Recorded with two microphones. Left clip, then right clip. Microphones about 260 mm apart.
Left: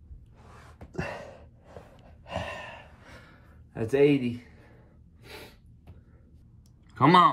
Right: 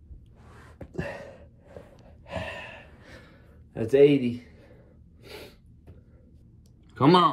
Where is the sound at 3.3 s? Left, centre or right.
Left.